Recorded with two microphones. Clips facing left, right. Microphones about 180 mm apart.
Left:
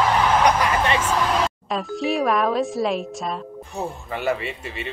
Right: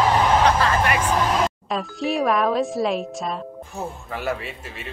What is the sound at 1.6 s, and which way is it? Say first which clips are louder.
A man's voice: left 1 dB; centre (ahead or behind).